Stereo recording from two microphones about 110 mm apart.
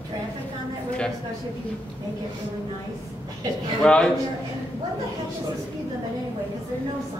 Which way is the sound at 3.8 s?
10° left (ahead or behind).